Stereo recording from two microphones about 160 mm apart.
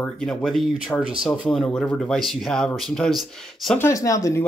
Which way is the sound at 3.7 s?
15° left (ahead or behind).